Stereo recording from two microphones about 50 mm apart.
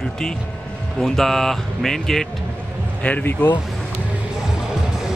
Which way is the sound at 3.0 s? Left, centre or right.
Left.